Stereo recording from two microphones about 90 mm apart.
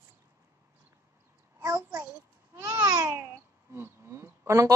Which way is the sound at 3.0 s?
25° right (ahead or behind).